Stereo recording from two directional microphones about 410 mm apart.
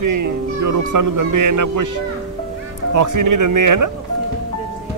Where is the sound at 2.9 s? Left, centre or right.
Right.